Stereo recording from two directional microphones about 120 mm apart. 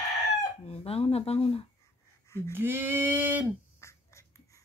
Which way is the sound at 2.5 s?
15° right (ahead or behind).